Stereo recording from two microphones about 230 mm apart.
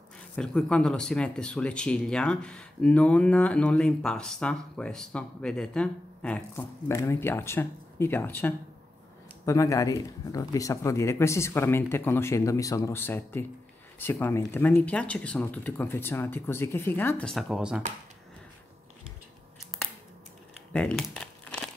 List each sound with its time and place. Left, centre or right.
0.4 s speech: centre
20.7 s crumpling: centre